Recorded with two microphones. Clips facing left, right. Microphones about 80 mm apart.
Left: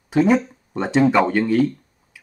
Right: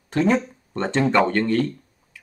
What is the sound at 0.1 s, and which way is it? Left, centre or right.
Speech, centre.